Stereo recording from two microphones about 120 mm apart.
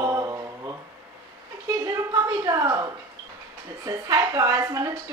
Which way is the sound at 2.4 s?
30° right (ahead or behind).